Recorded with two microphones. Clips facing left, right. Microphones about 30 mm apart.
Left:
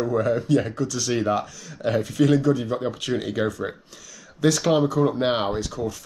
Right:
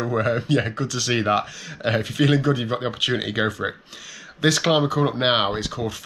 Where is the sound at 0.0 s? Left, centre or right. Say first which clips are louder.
Even; right.